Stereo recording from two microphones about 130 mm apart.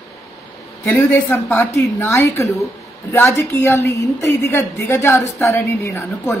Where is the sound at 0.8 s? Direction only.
15° left (ahead or behind).